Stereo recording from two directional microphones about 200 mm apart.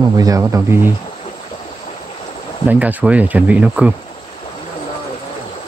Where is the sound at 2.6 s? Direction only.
5° right (ahead or behind).